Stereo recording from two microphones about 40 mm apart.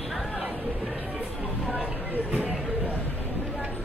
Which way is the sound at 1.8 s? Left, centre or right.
Right.